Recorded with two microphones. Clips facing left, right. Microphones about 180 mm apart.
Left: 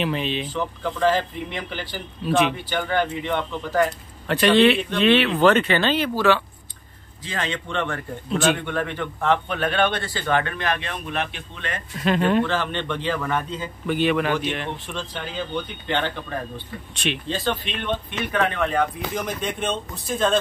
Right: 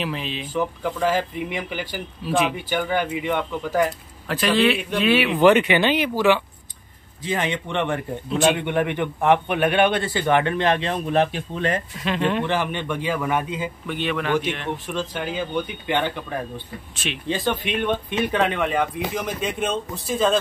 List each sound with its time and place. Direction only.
0.0 s a man's voice: centre (ahead or behind); by 11.8 s 35° right (ahead or behind)
12.0 s speech: 45° left (ahead or behind)
12.4 s speech: 15° right (ahead or behind)
13.8 s speech: 5° left (ahead or behind)
14.9 s speech: 10° right (ahead or behind)
17.3 s speech: 10° right (ahead or behind)